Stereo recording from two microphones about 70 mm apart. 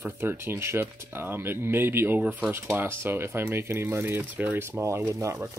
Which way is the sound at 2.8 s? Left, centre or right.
Right.